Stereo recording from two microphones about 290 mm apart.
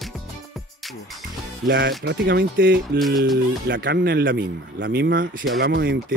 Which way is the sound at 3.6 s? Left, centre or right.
Right.